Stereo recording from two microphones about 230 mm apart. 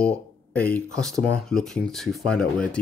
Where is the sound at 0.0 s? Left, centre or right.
Centre.